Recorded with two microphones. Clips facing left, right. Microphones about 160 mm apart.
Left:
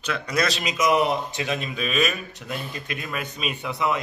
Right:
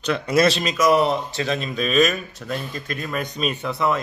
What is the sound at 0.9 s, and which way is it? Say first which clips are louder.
Speech: right 3 dB; 15° left (ahead or behind).